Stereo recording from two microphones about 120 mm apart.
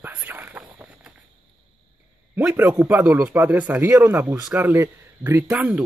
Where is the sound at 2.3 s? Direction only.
15° right (ahead or behind).